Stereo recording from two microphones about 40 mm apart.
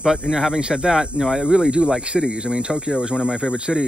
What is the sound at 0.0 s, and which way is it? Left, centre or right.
Speech, centre.